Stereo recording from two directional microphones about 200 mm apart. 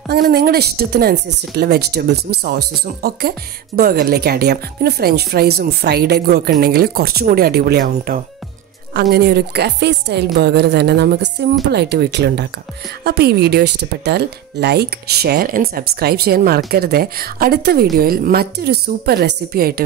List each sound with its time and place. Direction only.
0.1 s speech: 50° right (ahead or behind)